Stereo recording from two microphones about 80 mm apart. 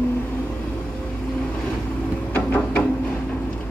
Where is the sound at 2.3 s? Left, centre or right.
Left.